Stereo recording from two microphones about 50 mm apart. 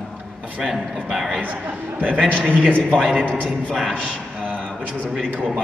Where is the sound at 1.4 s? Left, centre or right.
Right.